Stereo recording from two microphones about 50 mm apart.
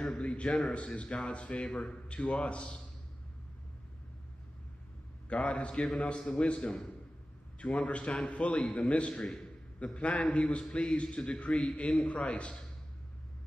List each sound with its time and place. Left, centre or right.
0.1 s a man's voice: left
5.3 s a man's voice: left
9.1 s a man's voice: centre
9.9 s a man's voice: left